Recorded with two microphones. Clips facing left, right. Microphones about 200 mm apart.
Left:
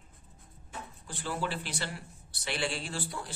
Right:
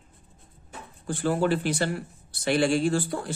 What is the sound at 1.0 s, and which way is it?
Speech, 50° right (ahead or behind).